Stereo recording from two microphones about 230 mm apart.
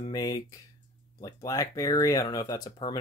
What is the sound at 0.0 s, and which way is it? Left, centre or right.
Speech, centre.